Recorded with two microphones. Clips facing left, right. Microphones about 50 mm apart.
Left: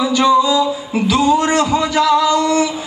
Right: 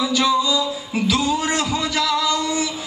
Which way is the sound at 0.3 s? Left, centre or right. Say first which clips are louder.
Left 9 dB; left.